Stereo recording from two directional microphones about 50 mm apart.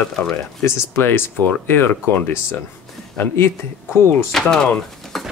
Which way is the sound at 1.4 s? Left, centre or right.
Left.